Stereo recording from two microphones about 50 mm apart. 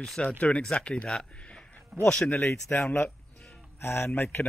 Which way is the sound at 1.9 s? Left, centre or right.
Centre.